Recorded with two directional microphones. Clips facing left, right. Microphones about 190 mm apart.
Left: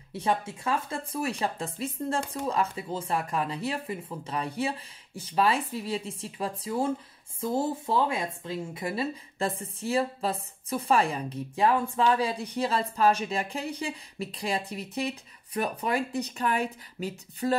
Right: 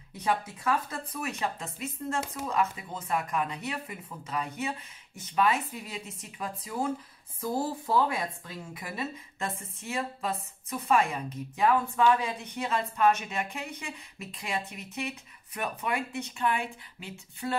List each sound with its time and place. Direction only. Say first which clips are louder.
0.1 s speech: left 2 dB; 30° left (ahead or behind)